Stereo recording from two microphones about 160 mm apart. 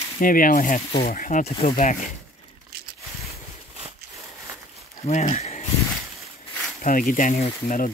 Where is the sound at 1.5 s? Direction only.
35° left (ahead or behind).